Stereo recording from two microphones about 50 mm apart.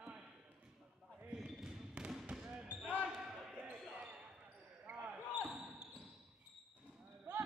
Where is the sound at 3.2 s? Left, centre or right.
Centre.